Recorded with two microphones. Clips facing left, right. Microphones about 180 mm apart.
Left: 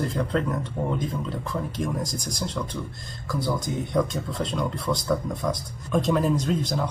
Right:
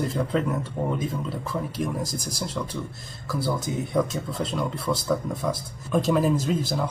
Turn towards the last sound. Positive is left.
turn(degrees=-5)  # may be behind; listen again after turning